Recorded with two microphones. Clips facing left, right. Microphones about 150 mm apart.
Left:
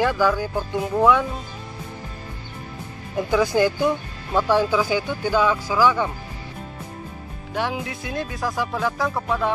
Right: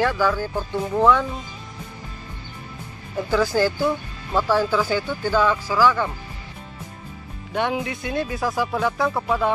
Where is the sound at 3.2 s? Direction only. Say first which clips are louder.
Left 1 dB; 15° left (ahead or behind).